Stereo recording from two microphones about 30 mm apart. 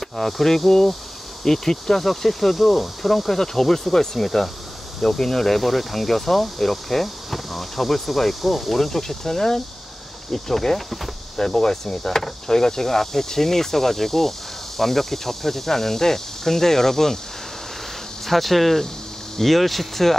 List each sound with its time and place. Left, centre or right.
0.2 s speech: centre
18.2 s speech: centre